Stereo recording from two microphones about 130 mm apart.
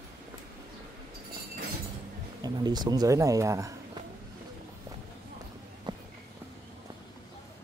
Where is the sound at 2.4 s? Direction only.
30° right (ahead or behind).